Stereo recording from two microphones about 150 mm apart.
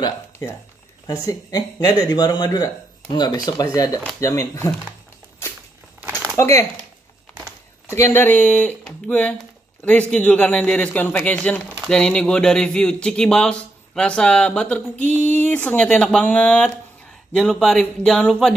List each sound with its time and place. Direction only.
0.0 s speech: 20° left (ahead or behind)
5.9 s a sound: 15° right (ahead or behind)
6.3 s speech: 20° left (ahead or behind)
7.9 s a man's voice: 15° left (ahead or behind)